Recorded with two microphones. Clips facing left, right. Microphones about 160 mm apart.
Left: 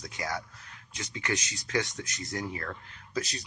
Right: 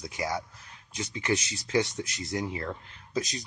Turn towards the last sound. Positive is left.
turn(degrees=-20)  # may be behind; listen again after turning